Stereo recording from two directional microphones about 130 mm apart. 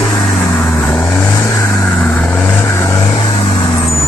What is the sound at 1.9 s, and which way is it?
Vehicle, 10° left (ahead or behind).